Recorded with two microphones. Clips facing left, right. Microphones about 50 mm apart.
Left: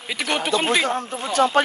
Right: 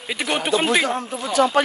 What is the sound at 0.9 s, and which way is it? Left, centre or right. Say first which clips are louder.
Speech: even; left.